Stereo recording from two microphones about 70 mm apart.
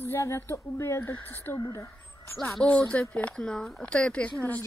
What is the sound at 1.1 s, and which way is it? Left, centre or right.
Speech, left.